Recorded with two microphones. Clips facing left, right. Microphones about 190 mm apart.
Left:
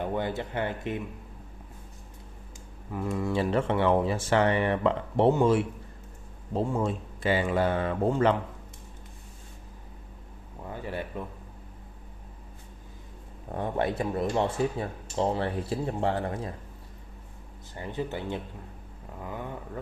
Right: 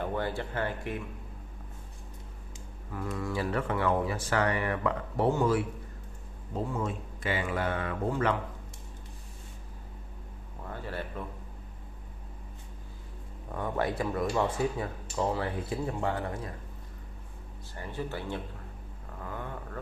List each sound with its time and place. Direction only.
0.0 s speech: 20° left (ahead or behind)
2.9 s speech: 15° left (ahead or behind)
10.7 s speech: 15° left (ahead or behind)
13.5 s speech: 25° left (ahead or behind)
17.7 s speech: 20° left (ahead or behind)